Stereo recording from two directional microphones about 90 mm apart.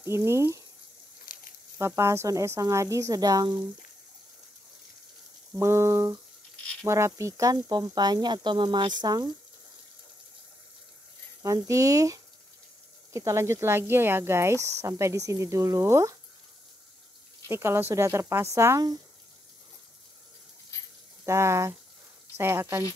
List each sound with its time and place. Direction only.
0.0 s speech: 30° right (ahead or behind)
1.8 s speech: 30° right (ahead or behind); by 3.5 s 45° right (ahead or behind)
5.5 s speech: 30° right (ahead or behind); by 9.3 s 50° right (ahead or behind)
11.4 s speech: 40° right (ahead or behind)
17.5 s speech: 30° right (ahead or behind)
21.3 s speech: 30° right (ahead or behind)